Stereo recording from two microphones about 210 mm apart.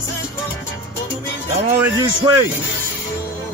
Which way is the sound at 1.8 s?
20° right (ahead or behind).